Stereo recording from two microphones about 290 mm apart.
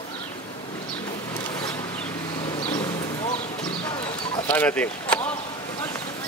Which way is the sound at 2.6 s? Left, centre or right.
Centre.